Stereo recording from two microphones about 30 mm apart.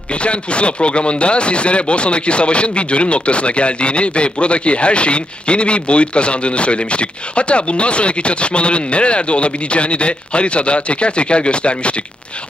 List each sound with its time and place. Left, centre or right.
0.1 s speech: left